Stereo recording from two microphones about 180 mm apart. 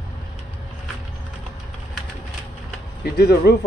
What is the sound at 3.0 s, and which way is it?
Speech, 60° left (ahead or behind).